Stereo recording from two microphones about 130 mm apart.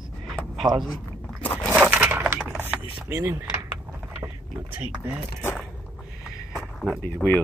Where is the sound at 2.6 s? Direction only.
20° right (ahead or behind).